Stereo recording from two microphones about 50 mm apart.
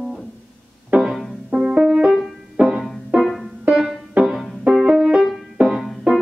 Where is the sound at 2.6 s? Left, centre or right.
Right.